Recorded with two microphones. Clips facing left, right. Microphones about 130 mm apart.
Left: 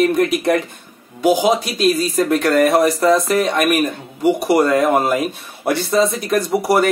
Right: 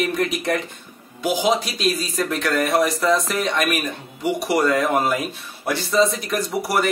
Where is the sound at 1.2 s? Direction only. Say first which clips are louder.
Left 5 dB; 50° left (ahead or behind).